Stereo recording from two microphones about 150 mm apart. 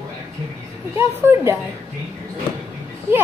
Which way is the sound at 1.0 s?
20° right (ahead or behind).